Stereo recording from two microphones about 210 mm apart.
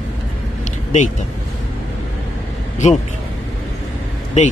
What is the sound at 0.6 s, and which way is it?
Vehicle, 35° left (ahead or behind).